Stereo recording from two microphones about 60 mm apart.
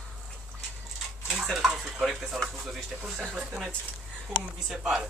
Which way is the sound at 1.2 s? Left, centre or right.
Centre.